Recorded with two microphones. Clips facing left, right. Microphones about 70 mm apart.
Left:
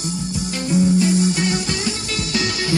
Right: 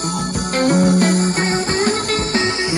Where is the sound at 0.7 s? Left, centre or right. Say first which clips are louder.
Right 2 dB; right.